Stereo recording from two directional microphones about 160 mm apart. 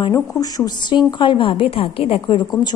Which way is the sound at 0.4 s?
25° left (ahead or behind).